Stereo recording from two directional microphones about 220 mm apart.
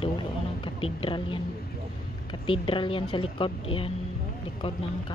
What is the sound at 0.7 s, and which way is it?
Speech, 25° left (ahead or behind).